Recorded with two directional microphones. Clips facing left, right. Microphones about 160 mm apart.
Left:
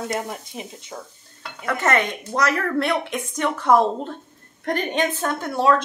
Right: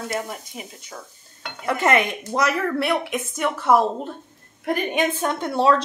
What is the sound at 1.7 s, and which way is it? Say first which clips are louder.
A woman's voice: right 2 dB; 15° right (ahead or behind).